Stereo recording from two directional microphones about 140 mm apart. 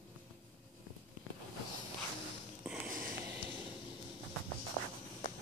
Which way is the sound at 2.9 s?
75° right (ahead or behind).